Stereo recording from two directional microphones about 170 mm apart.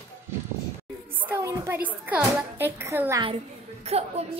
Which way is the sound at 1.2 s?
15° right (ahead or behind).